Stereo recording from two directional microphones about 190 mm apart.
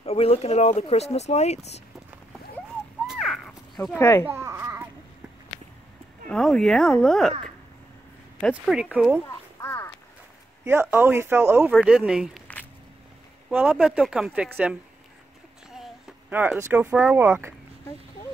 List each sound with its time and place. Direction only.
0.0 s speech: 30° left (ahead or behind)
3.1 s a sound: centre (ahead or behind)
4.0 s speech: 15° left (ahead or behind)
4.3 s a sound: 15° right (ahead or behind)
6.2 s speech: 5° left (ahead or behind)
8.4 s speech: centre (ahead or behind)
9.6 s boat: 15° left (ahead or behind)
10.6 s speech: 10° right (ahead or behind)
13.5 s speech: 5° right (ahead or behind)